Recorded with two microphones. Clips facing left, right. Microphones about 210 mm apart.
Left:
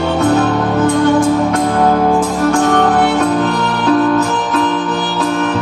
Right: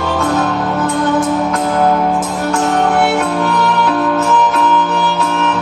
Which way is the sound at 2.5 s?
35° left (ahead or behind).